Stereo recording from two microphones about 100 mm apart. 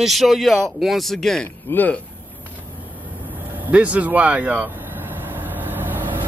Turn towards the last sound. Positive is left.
turn(degrees=-20)  # may be behind; listen again after turning